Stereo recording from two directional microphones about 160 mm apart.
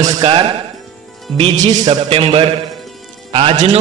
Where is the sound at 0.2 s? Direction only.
30° right (ahead or behind).